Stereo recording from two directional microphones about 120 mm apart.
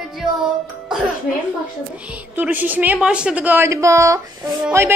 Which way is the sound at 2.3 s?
15° right (ahead or behind).